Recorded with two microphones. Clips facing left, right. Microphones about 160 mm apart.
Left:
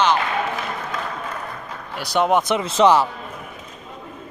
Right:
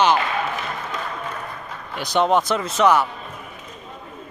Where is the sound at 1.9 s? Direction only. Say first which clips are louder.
Even; 10° left (ahead or behind).